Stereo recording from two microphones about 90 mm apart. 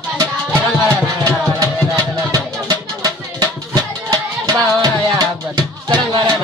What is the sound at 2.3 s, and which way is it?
Music, 45° right (ahead or behind).